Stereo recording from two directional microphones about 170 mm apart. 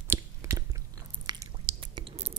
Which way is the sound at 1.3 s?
25° right (ahead or behind).